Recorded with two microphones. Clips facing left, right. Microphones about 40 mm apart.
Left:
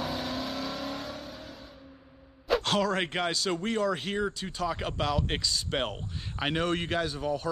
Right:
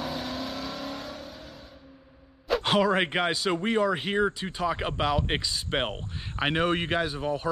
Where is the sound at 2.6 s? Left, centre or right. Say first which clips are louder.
Right 4 dB; right.